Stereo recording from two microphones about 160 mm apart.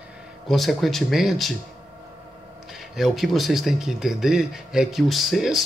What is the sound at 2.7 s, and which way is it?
Speech, centre (ahead or behind).